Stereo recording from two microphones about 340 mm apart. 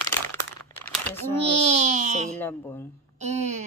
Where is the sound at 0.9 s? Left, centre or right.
Centre.